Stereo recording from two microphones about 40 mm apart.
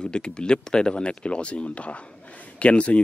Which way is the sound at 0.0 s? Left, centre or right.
Left.